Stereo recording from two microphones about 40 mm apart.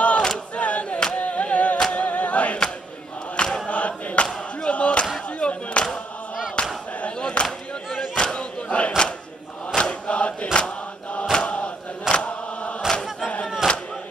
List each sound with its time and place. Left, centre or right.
0.0 s battle cry: left
0.6 s choir: left
1.1 s music: left
1.9 s a capella: left
3.3 s choir: centre
3.6 s choir: left
4.6 s a sound: left
5.4 s clapping: left
7.2 s a sound: left
8.1 s battle cry: left
9.8 s mantra: left
11.3 s chant: left
13.6 s a sound: right